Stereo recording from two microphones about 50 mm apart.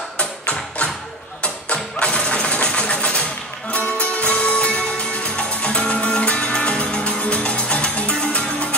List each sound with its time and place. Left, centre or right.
0.2 s music: left